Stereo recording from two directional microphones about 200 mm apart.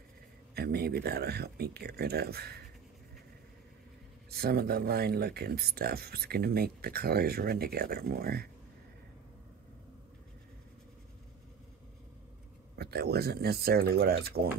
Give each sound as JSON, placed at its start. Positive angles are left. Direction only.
{"t": 0.6, "sound": "speech", "side_deg": -50}
{"t": 4.3, "sound": "speech", "side_deg": -50}
{"t": 12.7, "sound": "speech", "side_deg": -50}